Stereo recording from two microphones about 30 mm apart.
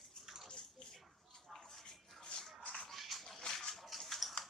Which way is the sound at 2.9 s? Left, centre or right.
Centre.